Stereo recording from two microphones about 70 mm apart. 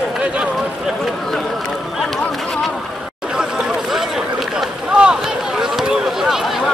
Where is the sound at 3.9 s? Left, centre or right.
Centre.